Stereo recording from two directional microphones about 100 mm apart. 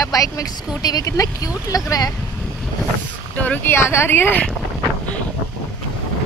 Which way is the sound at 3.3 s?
15° left (ahead or behind).